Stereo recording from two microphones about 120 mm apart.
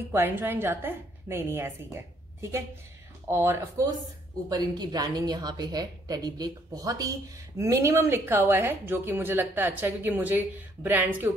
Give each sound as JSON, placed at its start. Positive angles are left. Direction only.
{"t": 0.1, "sound": "a woman's voice", "side_deg": -15}
{"t": 3.3, "sound": "a woman's voice", "side_deg": -20}
{"t": 4.5, "sound": "a woman's voice", "side_deg": -35}